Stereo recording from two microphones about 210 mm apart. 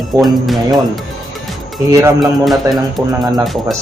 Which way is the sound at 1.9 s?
15° right (ahead or behind).